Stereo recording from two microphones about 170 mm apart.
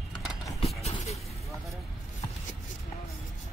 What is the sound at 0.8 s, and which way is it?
Vehicle, 40° left (ahead or behind).